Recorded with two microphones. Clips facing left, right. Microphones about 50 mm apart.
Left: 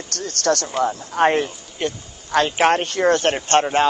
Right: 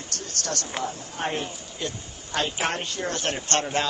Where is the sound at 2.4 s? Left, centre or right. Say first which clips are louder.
Left 10 dB; left.